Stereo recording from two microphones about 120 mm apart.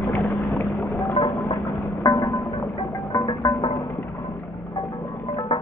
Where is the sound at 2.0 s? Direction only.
30° left (ahead or behind).